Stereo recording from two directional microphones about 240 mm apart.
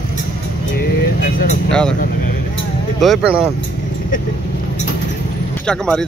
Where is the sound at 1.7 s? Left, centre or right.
Centre.